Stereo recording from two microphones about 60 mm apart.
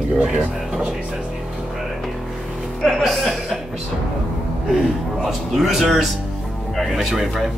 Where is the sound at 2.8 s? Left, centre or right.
Centre.